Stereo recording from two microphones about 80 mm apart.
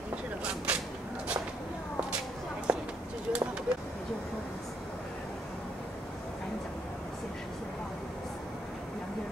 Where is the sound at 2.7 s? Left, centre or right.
Centre.